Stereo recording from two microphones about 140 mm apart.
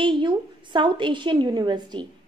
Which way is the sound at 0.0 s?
35° right (ahead or behind).